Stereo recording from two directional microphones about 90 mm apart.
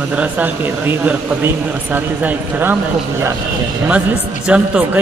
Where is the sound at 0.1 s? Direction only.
20° right (ahead or behind).